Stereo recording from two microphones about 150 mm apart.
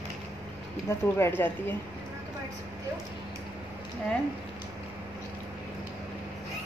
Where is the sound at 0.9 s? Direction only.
15° left (ahead or behind).